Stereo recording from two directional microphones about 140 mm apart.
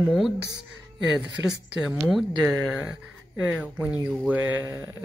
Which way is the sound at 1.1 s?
5° right (ahead or behind).